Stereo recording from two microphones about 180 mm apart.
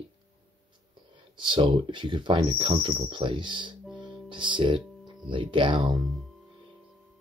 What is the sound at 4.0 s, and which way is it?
Music, 25° right (ahead or behind).